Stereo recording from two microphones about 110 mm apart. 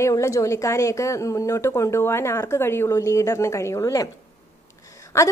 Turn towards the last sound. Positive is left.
turn(degrees=25)  # may be behind; listen again after turning